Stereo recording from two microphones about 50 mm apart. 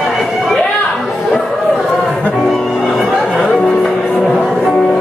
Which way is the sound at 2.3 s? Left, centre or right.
Centre.